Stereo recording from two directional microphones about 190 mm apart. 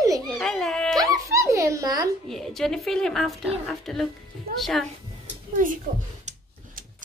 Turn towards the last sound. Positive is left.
turn(degrees=-35)  # may be behind; listen again after turning